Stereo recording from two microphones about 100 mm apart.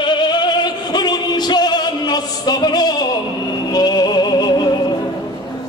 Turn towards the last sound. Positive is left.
turn(degrees=45)  # may be behind; listen again after turning